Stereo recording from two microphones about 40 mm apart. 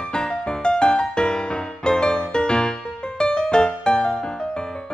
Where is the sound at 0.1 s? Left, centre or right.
Left.